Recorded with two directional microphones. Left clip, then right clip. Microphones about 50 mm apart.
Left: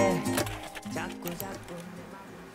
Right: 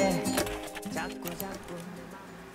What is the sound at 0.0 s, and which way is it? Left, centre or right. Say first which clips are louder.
Music: left 1 dB; centre.